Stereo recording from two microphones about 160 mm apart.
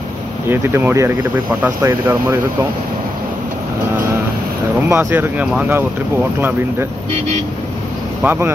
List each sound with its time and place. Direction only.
0.5 s speech: 15° right (ahead or behind)
4.8 s speech: 15° right (ahead or behind)
8.2 s speech: 15° right (ahead or behind)